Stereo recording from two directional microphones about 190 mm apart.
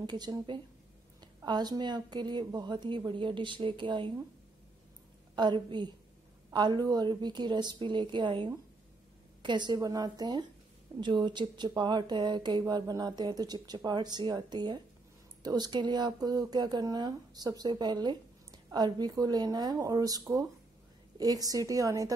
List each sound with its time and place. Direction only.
0.0 s speech: 20° right (ahead or behind)
5.3 s speech: 25° right (ahead or behind)